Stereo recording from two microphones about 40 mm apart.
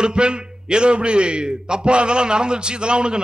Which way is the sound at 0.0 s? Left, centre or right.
Right.